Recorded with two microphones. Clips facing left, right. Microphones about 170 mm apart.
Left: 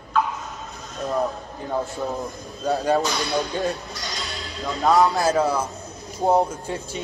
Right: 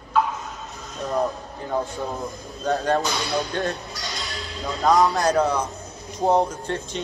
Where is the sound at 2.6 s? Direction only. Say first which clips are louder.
Left 1 dB; 5° left (ahead or behind).